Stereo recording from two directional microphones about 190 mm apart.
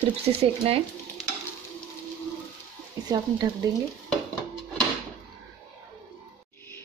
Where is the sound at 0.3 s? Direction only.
30° right (ahead or behind).